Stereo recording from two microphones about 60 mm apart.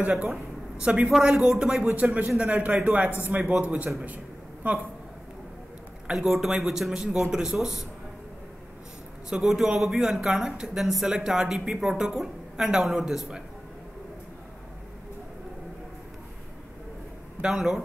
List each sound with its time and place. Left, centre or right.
0.7 s a man's voice: centre
6.1 s a woman's voice: centre
9.3 s a woman's voice: centre
17.4 s speech: centre